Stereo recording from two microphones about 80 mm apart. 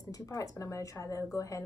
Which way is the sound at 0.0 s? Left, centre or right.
Left.